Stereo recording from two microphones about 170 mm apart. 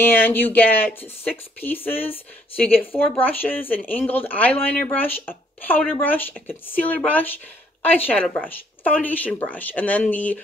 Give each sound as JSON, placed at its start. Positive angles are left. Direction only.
{"t": 0.0, "sound": "speech", "side_deg": 10}